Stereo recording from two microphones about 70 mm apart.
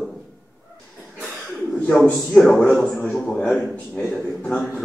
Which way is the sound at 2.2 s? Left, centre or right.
Centre.